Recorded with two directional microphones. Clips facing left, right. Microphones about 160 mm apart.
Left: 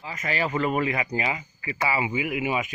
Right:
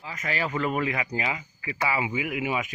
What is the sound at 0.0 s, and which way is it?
Speech, 10° left (ahead or behind).